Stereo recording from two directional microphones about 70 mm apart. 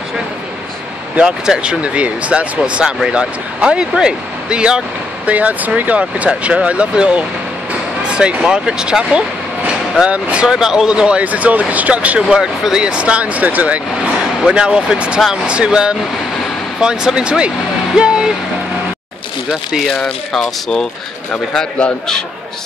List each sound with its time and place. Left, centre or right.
1.1 s speech: centre
14.4 s speech: centre
19.9 s speech: centre
21.3 s speech: centre